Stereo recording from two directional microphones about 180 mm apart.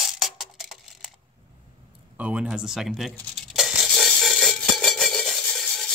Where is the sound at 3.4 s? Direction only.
Centre (ahead or behind).